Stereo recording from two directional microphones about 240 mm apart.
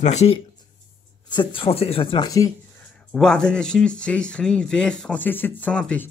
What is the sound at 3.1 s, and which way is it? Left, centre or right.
Speech, centre.